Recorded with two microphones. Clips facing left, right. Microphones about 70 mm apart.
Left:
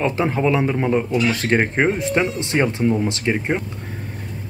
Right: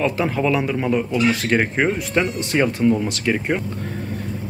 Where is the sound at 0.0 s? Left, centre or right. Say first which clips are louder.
Left 1 dB; left.